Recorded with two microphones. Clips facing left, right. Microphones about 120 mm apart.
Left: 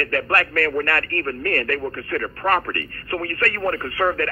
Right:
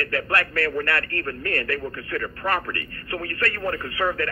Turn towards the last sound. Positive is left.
turn(degrees=50)  # may be behind; listen again after turning